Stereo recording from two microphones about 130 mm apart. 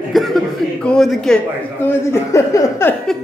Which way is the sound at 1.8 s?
20° left (ahead or behind).